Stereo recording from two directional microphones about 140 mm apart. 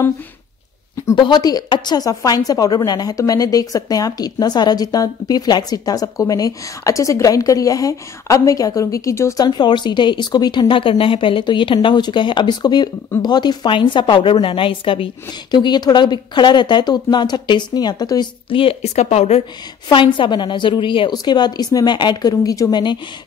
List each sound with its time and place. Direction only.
1.1 s a woman's voice: 30° left (ahead or behind); by 19.4 s 50° left (ahead or behind)
19.9 s speech: 35° left (ahead or behind)